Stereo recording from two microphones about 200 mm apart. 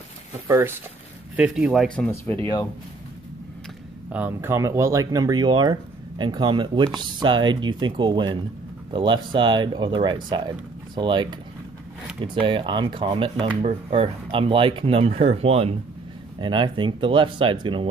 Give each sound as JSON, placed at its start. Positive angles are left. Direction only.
{"t": 0.5, "sound": "speech", "side_deg": -10}
{"t": 2.0, "sound": "speech", "side_deg": 10}
{"t": 4.1, "sound": "speech", "side_deg": -10}